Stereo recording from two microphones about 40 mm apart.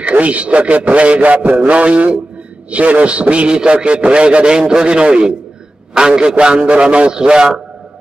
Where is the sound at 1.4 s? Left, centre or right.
Right.